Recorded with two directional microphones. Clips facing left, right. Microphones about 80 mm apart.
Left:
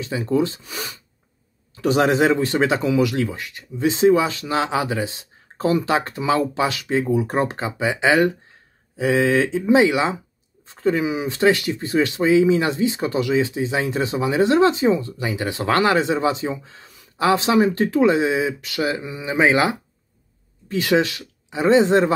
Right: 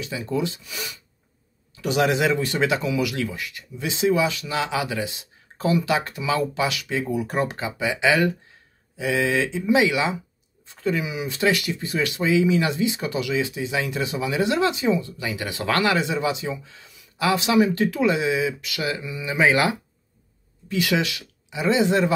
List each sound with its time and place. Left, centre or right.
0.0 s speech: left
10.7 s a sound: left
11.1 s speech: left
15.2 s speech: left
20.6 s speech: left